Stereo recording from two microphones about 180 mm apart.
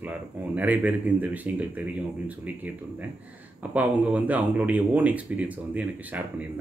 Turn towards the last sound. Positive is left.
turn(degrees=-10)  # may be behind; listen again after turning